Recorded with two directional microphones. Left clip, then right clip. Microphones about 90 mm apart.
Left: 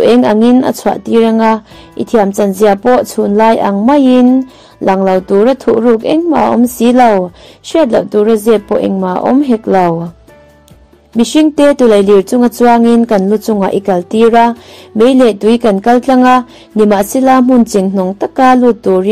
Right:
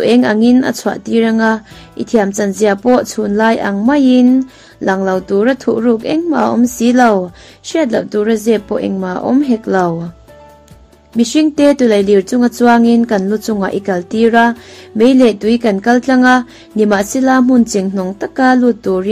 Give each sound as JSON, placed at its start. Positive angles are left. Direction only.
{"t": 0.0, "sound": "a woman's voice", "side_deg": 40}
{"t": 11.1, "sound": "speech", "side_deg": 50}